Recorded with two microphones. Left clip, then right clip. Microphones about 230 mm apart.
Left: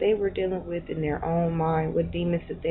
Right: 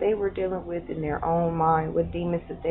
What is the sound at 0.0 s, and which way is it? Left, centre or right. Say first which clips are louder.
Speech: left 1 dB; centre.